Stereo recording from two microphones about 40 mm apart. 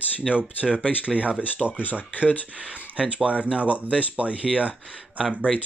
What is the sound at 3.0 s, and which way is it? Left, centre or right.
Speech, right.